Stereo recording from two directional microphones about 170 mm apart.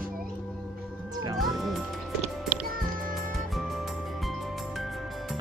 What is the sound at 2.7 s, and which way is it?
Music, 55° right (ahead or behind).